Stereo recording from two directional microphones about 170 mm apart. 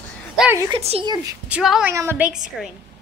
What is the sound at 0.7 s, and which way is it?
Speech, 30° right (ahead or behind).